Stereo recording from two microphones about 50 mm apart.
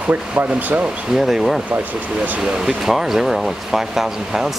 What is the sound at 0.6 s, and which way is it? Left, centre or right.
Speech, right.